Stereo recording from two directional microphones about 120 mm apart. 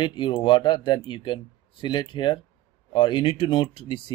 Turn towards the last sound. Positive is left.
turn(degrees=45)  # may be behind; listen again after turning